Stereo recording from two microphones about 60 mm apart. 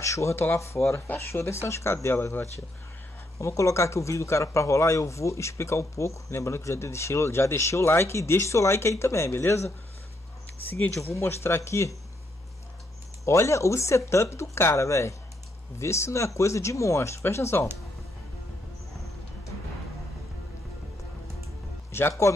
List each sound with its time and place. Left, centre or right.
0.0 s speech: left
3.3 s speech: left
11.0 s speech: left
13.2 s speech: left
21.9 s a sound: left